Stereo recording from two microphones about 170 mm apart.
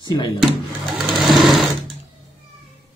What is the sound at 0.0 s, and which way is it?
Speech, 25° left (ahead or behind).